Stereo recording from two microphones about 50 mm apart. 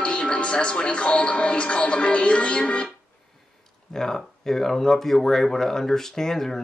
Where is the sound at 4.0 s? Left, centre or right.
Centre.